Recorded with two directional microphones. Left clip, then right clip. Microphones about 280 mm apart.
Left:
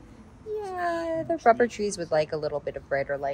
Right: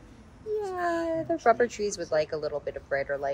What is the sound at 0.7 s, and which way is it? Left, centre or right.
Speech, centre.